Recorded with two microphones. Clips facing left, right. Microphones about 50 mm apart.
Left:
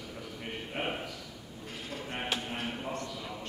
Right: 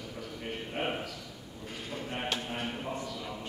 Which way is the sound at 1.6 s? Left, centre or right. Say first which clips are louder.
Right 2 dB; centre.